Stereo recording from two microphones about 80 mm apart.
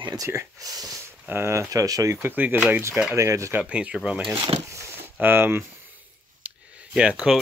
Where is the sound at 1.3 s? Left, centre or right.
Right.